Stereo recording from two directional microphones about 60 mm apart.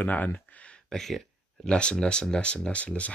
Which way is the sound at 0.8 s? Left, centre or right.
Centre.